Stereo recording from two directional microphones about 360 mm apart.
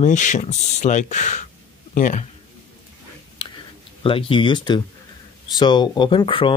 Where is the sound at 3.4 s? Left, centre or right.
Centre.